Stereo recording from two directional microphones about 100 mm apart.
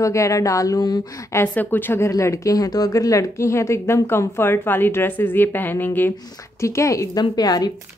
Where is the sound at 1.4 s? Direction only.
15° left (ahead or behind).